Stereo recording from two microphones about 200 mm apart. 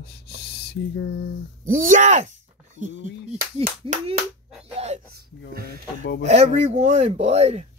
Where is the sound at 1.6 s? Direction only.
40° right (ahead or behind).